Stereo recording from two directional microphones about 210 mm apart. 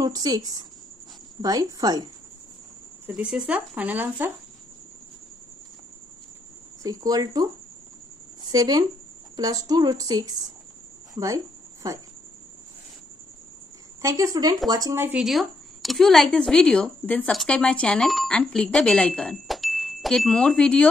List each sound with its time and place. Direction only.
0.0 s a woman's voice: 15° right (ahead or behind)
3.1 s a woman's voice: 5° right (ahead or behind)
6.8 s a woman's voice: 15° right (ahead or behind)
8.5 s a woman's voice: 20° right (ahead or behind)
11.1 s a sound: 15° right (ahead or behind)
14.0 s a woman's voice: 15° right (ahead or behind); by 20.9 s 5° left (ahead or behind)